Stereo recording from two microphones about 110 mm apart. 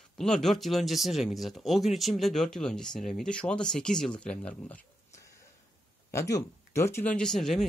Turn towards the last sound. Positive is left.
turn(degrees=5)  # may be behind; listen again after turning